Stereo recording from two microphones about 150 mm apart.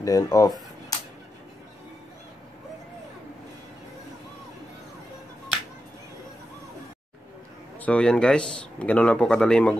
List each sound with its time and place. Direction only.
0.0 s speech: 25° left (ahead or behind)
7.8 s speech: 5° left (ahead or behind)